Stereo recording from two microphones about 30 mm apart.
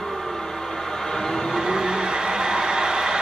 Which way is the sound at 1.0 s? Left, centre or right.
Centre.